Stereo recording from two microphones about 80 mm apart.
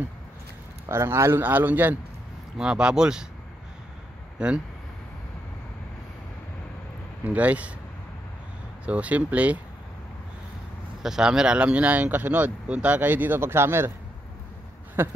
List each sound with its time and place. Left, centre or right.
0.8 s a man's voice: right
2.5 s speech: centre
4.4 s speech: centre
7.2 s speech: centre
8.8 s speech: centre
11.0 s speech: centre; by 13.9 s right
15.0 s speech: right